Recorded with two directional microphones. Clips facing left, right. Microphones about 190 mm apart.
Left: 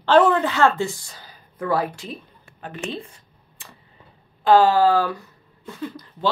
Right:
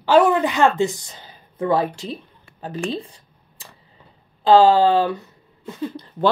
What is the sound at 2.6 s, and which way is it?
Speech, 35° right (ahead or behind).